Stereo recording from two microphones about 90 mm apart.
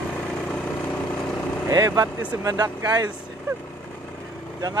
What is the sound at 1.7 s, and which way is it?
Speech, 40° right (ahead or behind).